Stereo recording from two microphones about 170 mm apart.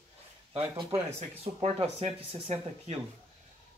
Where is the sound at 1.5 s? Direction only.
35° right (ahead or behind).